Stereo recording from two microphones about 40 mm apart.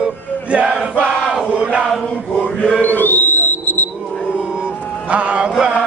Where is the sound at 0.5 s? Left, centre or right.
Right.